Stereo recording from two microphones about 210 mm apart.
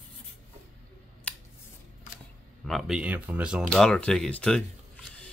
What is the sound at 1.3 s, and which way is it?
Scissors, 5° left (ahead or behind).